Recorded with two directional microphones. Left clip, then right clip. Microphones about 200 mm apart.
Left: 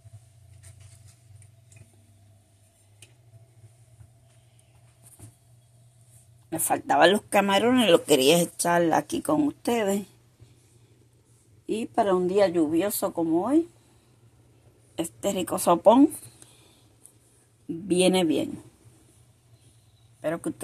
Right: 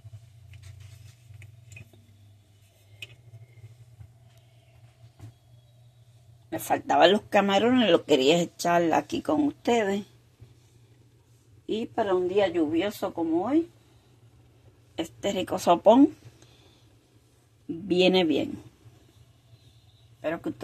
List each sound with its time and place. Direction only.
6.5 s speech: 5° left (ahead or behind)
11.6 s a sound: 10° left (ahead or behind)
11.9 s speech: 25° left (ahead or behind)
15.0 s speech: 10° left (ahead or behind)
17.8 s speech: 5° left (ahead or behind)
20.2 s speech: 5° left (ahead or behind)